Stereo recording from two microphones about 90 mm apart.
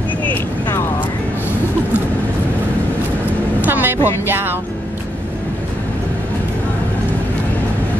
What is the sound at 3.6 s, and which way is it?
Vehicle, 20° right (ahead or behind).